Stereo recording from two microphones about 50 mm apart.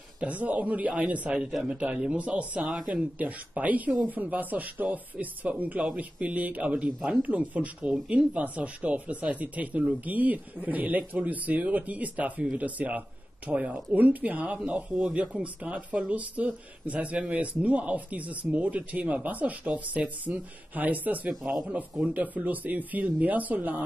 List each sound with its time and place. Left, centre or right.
0.2 s speech: right